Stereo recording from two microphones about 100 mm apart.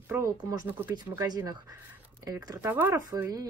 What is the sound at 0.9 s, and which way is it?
Speech, 45° right (ahead or behind).